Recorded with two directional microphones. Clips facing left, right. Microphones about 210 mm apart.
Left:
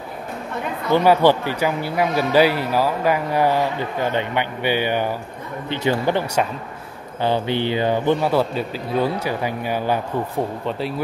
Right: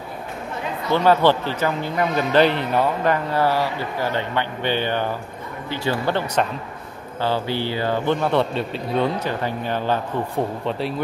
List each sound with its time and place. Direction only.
0.9 s speech: 10° left (ahead or behind)